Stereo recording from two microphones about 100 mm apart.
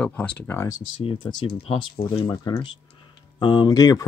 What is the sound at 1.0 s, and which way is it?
Speech, 55° left (ahead or behind).